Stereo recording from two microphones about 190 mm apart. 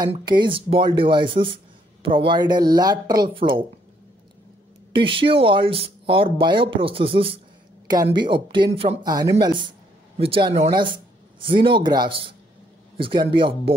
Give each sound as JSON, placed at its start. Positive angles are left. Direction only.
{"t": 0.1, "sound": "speech", "side_deg": -25}
{"t": 4.9, "sound": "speech", "side_deg": -25}